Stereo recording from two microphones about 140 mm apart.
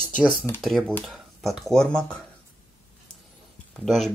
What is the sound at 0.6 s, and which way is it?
Speech, 5° left (ahead or behind).